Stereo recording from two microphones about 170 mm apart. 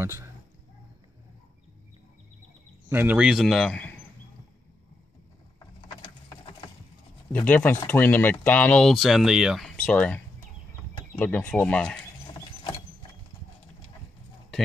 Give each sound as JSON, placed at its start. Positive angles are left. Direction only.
{"t": 0.0, "sound": "speech", "side_deg": -15}
{"t": 2.9, "sound": "speech", "side_deg": -10}
{"t": 7.3, "sound": "speech", "side_deg": 10}